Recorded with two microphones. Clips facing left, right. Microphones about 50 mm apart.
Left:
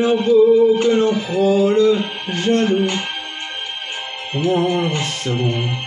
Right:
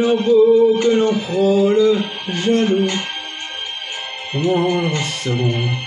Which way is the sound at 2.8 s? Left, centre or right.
Centre.